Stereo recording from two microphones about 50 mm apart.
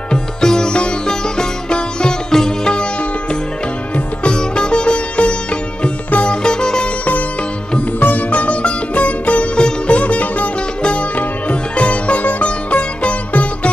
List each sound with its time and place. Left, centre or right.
0.1 s sitar: centre
3.9 s sitar: centre
8.0 s sitar: left